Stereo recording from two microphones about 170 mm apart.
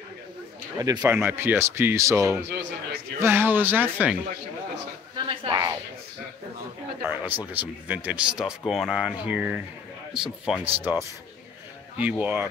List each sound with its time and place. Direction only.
0.7 s speech: 20° right (ahead or behind)
5.1 s a sound: 30° right (ahead or behind)
7.0 s a man's voice: 10° right (ahead or behind)
12.0 s speech: 10° right (ahead or behind)